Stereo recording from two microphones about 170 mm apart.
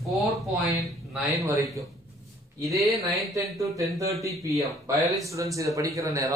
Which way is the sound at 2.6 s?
20° right (ahead or behind).